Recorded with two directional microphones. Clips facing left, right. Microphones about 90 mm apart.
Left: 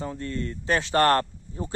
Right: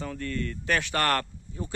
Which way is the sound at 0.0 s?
25° left (ahead or behind).